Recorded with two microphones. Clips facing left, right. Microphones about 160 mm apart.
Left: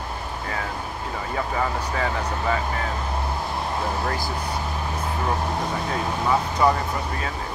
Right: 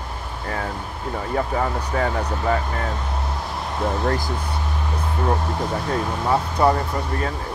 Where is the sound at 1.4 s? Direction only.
45° right (ahead or behind).